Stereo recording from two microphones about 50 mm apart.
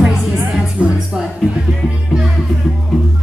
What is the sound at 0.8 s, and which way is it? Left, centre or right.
Music, right.